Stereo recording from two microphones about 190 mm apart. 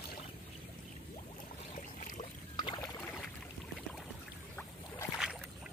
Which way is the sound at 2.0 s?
40° left (ahead or behind).